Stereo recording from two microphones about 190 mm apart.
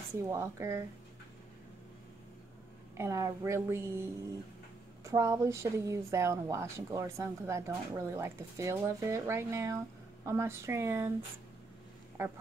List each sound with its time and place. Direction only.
0.2 s speech: 15° right (ahead or behind)
3.0 s speech: 15° right (ahead or behind)
5.0 s speech: 15° right (ahead or behind)